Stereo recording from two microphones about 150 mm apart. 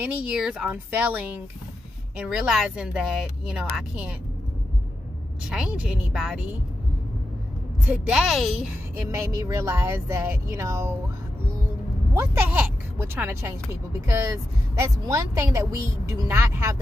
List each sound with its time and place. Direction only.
0.0 s speech: 5° right (ahead or behind)
5.5 s speech: 5° right (ahead or behind)
7.8 s speech: 5° right (ahead or behind)
9.1 s speech: 20° right (ahead or behind)
12.1 s speech: 15° right (ahead or behind)